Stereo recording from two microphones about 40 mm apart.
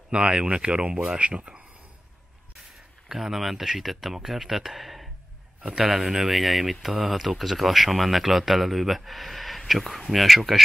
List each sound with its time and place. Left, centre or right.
0.1 s speech: right
3.1 s speech: centre
5.6 s a man's voice: right
5.9 s speech: centre